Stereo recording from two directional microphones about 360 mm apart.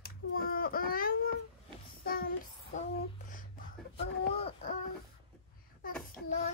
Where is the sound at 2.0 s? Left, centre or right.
Left.